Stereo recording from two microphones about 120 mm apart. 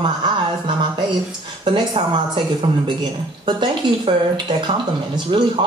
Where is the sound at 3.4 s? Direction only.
40° right (ahead or behind).